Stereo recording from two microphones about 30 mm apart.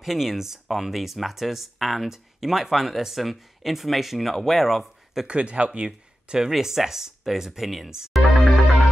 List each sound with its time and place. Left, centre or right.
0.0 s speech: centre
2.0 s speech: centre
5.2 s speech: right
6.2 s speech: right
6.5 s speech: centre
8.1 s music: centre